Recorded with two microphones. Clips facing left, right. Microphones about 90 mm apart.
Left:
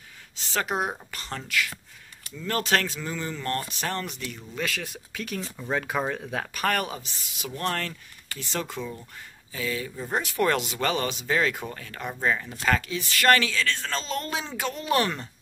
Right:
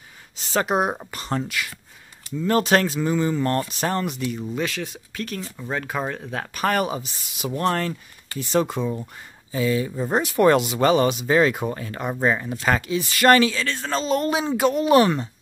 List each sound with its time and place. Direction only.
0.6 s speech: 20° right (ahead or behind)
4.6 s speech: 5° left (ahead or behind)
6.3 s speech: 5° right (ahead or behind)
7.3 s speech: 20° right (ahead or behind)